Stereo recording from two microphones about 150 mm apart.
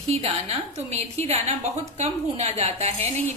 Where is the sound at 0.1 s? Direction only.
45° right (ahead or behind).